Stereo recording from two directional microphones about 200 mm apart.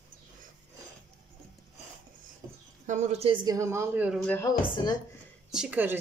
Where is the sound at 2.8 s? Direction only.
35° right (ahead or behind).